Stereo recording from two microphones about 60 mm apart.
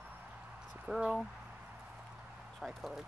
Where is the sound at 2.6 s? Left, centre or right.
Centre.